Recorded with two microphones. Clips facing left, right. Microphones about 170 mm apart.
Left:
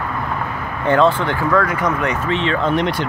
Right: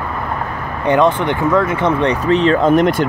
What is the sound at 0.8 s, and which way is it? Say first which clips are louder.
Speech: right 2 dB; 20° right (ahead or behind).